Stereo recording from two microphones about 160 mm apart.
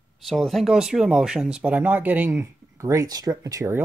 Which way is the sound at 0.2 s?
Centre (ahead or behind).